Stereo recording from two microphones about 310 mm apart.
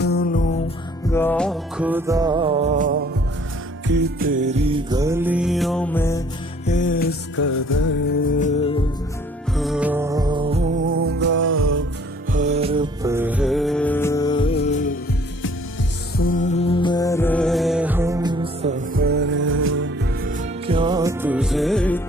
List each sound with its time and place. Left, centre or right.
0.0 s music: left
1.1 s music: centre
6.6 s music: left
9.6 s music: centre; by 11.0 s right
11.0 s music: right
12.3 s music: right; by 14.9 s left
16.2 s music: left; by 19.9 s right
20.2 s music: centre